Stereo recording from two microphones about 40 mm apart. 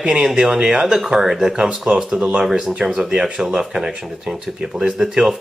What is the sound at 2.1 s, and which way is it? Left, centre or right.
Speech, right.